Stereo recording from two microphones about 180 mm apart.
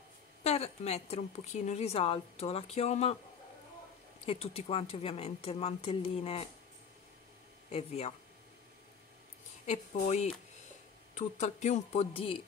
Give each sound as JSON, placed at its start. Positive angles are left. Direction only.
{"t": 0.4, "sound": "a woman's voice", "side_deg": 35}
{"t": 4.3, "sound": "a woman's voice", "side_deg": 35}
{"t": 7.7, "sound": "a woman's voice", "side_deg": 35}
{"t": 9.7, "sound": "a woman's voice", "side_deg": 40}